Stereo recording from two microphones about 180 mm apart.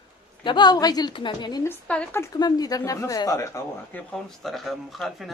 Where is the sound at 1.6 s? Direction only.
5° left (ahead or behind).